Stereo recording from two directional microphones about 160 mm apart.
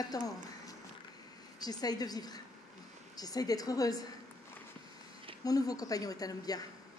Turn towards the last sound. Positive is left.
turn(degrees=25)  # may be behind; listen again after turning